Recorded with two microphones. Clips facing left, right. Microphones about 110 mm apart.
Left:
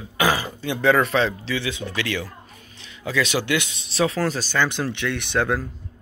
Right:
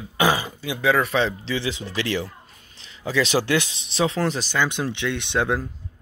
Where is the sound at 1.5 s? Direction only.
30° right (ahead or behind).